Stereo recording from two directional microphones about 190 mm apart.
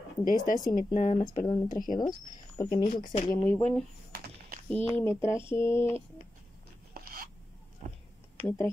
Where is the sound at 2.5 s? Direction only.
20° left (ahead or behind).